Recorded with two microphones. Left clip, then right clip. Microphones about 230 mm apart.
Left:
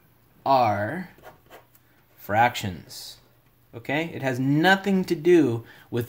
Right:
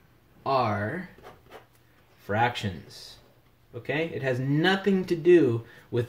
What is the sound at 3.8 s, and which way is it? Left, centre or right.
Speech, left.